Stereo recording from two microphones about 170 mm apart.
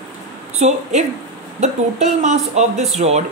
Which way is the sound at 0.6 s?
45° right (ahead or behind).